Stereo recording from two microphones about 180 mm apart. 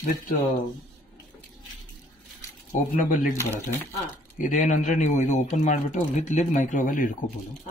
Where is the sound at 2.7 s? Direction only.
45° left (ahead or behind).